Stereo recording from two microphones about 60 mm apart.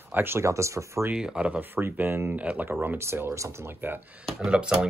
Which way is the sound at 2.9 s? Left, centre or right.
Right.